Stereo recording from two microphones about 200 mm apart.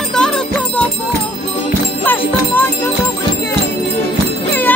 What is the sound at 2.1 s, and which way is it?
Music, 10° left (ahead or behind).